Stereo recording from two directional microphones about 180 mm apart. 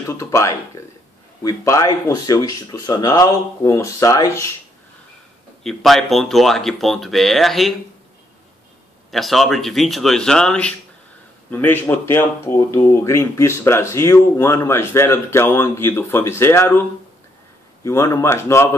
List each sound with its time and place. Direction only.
0.1 s speech: 15° left (ahead or behind)
5.6 s speech: centre (ahead or behind)
9.1 s speech: centre (ahead or behind)
17.8 s speech: 15° left (ahead or behind)